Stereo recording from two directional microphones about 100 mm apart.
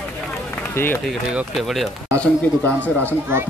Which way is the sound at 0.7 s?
20° left (ahead or behind).